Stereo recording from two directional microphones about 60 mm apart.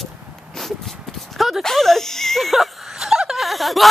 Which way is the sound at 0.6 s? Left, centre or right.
Centre.